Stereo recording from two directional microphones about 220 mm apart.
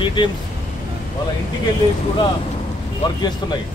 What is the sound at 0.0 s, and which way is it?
Speech, 20° left (ahead or behind).